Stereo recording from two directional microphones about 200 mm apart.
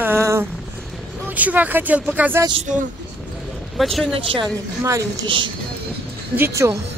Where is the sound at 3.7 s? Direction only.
Centre (ahead or behind).